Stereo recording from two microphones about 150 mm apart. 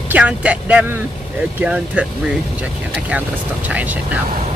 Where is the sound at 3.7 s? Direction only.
10° right (ahead or behind).